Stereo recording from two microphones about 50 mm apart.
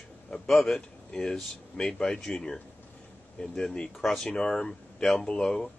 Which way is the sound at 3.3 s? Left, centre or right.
Centre.